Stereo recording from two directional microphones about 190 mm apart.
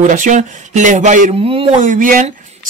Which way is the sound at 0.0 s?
40° right (ahead or behind).